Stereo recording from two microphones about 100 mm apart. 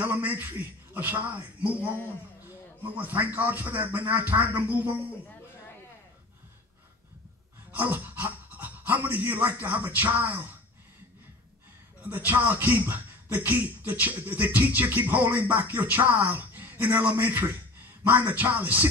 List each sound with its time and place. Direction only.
0.0 s a man's voice: 15° right (ahead or behind)
7.8 s speech: 20° right (ahead or behind)
12.0 s speech: 15° right (ahead or behind)